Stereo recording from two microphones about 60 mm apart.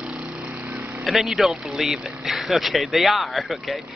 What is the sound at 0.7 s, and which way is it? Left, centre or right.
Vehicle, right.